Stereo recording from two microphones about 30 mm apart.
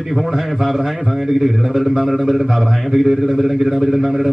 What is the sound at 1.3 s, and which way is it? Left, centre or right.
Speech, centre.